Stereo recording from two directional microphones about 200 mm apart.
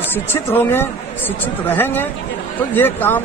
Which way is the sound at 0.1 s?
10° left (ahead or behind).